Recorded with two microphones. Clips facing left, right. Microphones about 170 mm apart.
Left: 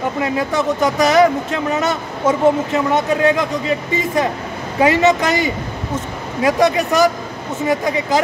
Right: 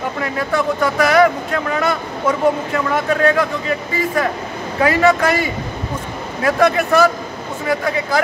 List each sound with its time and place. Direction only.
0.2 s speech: 20° left (ahead or behind)